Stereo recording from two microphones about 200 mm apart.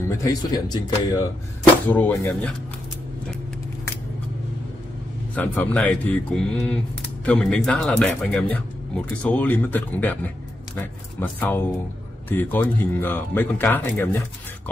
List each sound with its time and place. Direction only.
0.2 s speech: 20° left (ahead or behind)
1.9 s speech: 10° left (ahead or behind)
5.3 s speech: 5° left (ahead or behind)